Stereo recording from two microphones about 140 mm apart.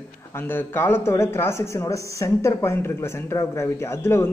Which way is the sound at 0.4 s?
15° left (ahead or behind).